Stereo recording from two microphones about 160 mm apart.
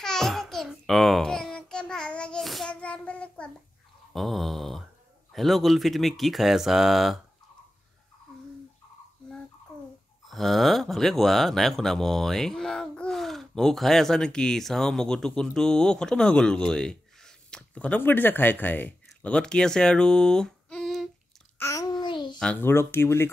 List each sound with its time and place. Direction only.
0.0 s babbling: 5° left (ahead or behind)
4.1 s a sound: centre (ahead or behind)
5.3 s speech: centre (ahead or behind)
10.2 s speech: centre (ahead or behind)
21.5 s babbling: 20° left (ahead or behind)
22.4 s speech: 10° left (ahead or behind)